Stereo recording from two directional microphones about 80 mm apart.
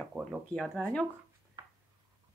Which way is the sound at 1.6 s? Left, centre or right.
Right.